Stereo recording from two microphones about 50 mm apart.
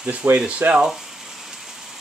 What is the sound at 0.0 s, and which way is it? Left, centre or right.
Speech, right.